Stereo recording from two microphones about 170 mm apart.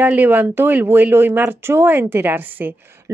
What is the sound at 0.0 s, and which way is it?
Speech, 10° right (ahead or behind).